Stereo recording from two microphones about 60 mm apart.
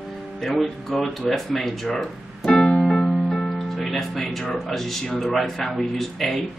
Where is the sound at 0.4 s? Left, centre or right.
Centre.